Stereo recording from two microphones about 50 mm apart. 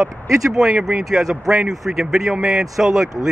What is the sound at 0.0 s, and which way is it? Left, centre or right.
Speech, centre.